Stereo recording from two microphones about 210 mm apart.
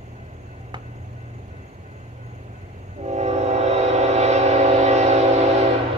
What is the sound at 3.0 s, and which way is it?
Train, 30° right (ahead or behind).